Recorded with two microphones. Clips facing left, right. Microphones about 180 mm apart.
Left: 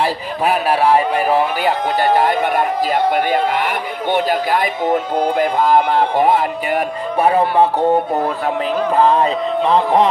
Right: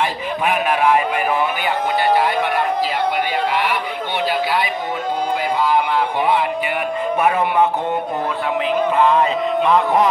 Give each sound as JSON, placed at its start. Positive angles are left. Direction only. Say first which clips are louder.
{"t": 0.0, "sound": "speech", "louder": "left 2 dB", "side_deg": 35}
{"t": 8.9, "sound": "speech", "louder": "left 4 dB", "side_deg": 35}